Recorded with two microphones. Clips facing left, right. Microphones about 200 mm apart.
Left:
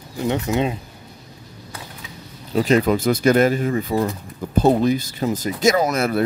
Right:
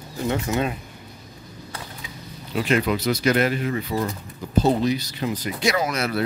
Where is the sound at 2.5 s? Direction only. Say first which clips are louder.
Left 5 dB; 40° left (ahead or behind).